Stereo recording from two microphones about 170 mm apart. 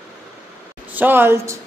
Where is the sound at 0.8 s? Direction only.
10° right (ahead or behind).